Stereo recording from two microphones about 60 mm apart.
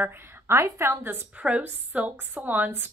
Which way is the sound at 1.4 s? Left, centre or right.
Right.